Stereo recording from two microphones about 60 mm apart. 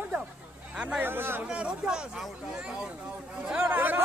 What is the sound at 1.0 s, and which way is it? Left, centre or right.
Speech, right.